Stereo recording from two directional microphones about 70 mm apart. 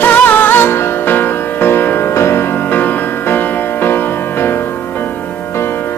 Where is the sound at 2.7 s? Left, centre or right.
Left.